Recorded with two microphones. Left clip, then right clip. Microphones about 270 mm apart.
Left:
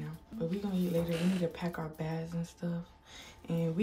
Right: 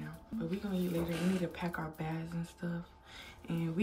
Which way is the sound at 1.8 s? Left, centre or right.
Centre.